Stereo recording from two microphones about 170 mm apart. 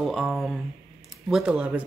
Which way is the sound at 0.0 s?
Centre (ahead or behind).